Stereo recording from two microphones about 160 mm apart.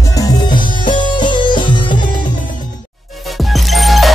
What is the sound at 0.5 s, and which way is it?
Music, 30° left (ahead or behind).